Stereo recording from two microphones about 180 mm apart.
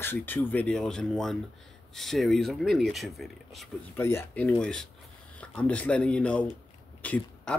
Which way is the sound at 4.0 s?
10° left (ahead or behind).